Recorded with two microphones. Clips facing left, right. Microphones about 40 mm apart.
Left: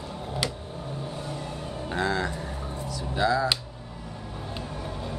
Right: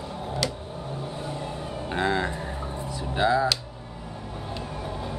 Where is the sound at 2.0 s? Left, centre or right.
Right.